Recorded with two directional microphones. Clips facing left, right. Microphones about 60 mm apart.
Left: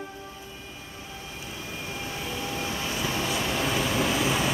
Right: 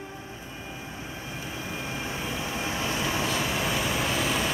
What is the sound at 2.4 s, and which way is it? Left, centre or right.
Vehicle, right.